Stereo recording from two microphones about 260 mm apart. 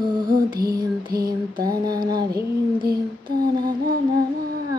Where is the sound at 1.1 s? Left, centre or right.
Right.